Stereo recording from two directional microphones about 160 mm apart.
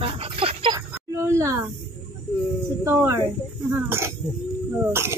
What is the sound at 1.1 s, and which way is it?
Speech, 20° right (ahead or behind).